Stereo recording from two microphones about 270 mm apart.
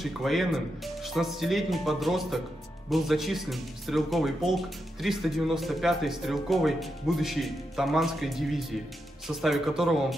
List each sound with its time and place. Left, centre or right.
0.0 s speech: centre